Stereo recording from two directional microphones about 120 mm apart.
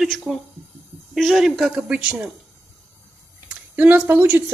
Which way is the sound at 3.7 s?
15° right (ahead or behind).